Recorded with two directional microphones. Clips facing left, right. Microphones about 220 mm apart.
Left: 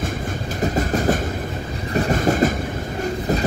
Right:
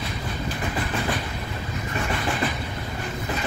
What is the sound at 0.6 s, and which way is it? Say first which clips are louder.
Train: left 10 dB; 45° left (ahead or behind).